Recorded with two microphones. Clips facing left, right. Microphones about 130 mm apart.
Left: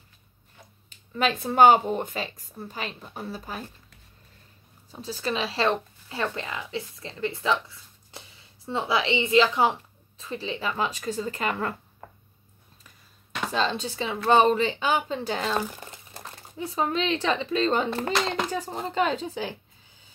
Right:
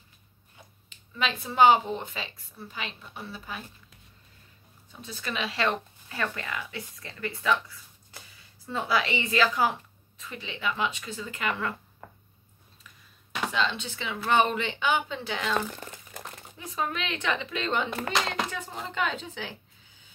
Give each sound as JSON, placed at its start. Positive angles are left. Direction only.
{"t": 0.8, "sound": "speech", "side_deg": 45}
{"t": 5.0, "sound": "speech", "side_deg": 30}
{"t": 13.5, "sound": "speech", "side_deg": 40}